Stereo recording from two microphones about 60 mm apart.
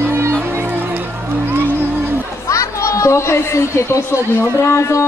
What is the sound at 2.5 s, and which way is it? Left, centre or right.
Speech, left.